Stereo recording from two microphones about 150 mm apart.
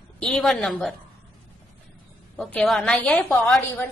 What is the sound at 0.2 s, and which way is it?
Speech, centre (ahead or behind).